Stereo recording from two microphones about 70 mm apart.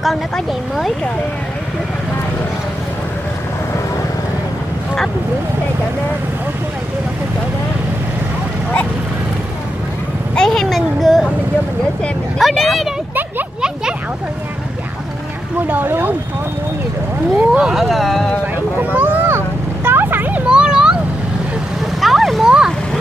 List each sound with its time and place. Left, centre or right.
10.3 s speech: centre
12.4 s speech: centre
15.7 s speech: right
17.4 s speech: centre
17.7 s speech: centre
18.8 s vehicle: right
22.0 s a sound: centre